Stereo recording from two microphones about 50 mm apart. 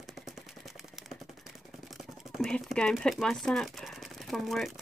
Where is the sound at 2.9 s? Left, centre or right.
Centre.